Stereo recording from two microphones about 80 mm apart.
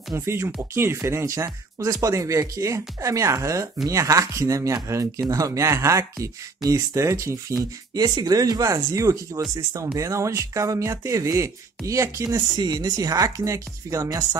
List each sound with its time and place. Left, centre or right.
0.1 s speech: right
7.5 s speech: right
12.4 s speech: right